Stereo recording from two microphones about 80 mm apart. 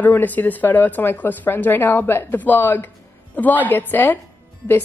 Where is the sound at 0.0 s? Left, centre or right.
Left.